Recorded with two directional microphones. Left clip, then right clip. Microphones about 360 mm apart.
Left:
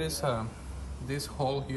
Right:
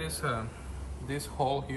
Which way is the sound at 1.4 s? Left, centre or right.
Left.